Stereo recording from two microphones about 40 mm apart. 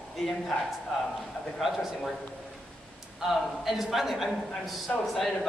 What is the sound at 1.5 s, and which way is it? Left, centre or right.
Speech, centre.